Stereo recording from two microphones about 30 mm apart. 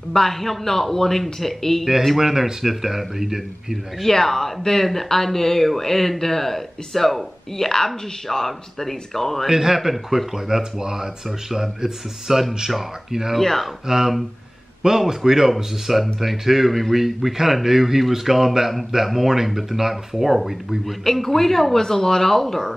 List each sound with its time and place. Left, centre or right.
0.1 s speech: centre
2.1 s speech: centre
4.0 s speech: centre
9.5 s speech: centre
13.4 s speech: centre
13.8 s speech: centre
15.5 s speech: centre
21.0 s speech: centre